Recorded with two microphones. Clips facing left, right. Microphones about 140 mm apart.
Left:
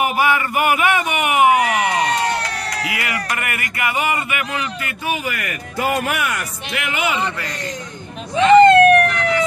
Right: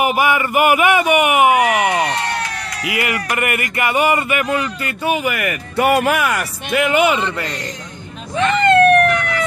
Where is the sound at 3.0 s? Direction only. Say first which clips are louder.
Right 4 dB; 20° right (ahead or behind).